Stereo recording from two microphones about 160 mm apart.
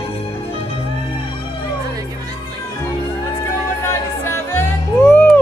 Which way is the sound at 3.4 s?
15° left (ahead or behind).